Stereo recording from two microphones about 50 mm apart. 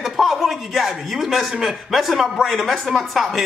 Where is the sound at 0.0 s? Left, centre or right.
Centre.